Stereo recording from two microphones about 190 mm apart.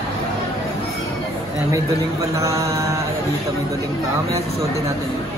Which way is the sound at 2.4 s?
15° right (ahead or behind).